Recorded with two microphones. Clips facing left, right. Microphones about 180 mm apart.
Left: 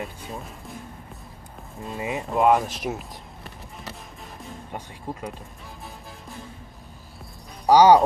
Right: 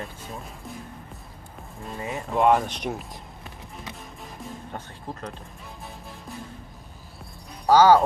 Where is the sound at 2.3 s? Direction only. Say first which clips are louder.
Even; centre (ahead or behind).